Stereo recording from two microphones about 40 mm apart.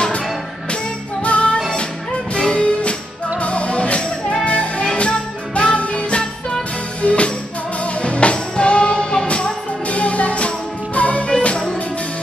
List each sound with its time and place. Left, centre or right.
1.2 s music: left
2.3 s music: left
2.6 s music: left